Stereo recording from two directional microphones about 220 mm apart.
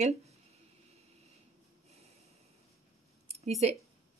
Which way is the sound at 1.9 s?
30° right (ahead or behind).